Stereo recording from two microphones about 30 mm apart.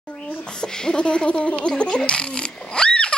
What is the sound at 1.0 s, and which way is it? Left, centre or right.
Speech, left.